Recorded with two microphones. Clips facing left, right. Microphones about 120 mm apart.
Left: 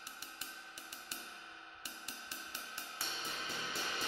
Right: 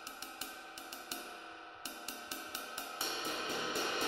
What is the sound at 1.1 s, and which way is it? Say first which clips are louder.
Music: right 5 dB; 55° right (ahead or behind).